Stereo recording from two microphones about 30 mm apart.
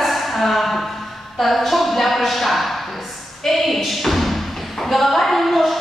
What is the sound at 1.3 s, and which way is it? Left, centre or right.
A woman's voice, centre.